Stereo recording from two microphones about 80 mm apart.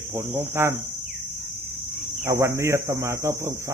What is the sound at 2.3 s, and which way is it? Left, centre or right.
A man's voice, right.